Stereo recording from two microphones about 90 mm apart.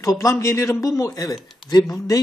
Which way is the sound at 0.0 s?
40° left (ahead or behind).